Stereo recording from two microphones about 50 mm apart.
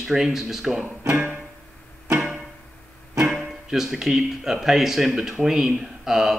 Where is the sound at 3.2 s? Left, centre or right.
Centre.